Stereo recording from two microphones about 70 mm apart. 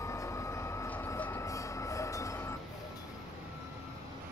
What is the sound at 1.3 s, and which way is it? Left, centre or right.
Train, left.